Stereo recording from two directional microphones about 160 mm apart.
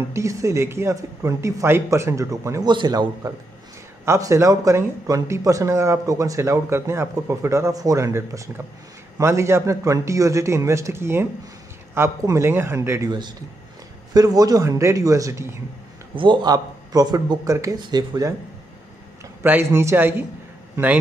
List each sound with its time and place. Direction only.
0.1 s speech: 20° right (ahead or behind)
14.1 s speech: 25° right (ahead or behind)
19.4 s a man's voice: 15° right (ahead or behind)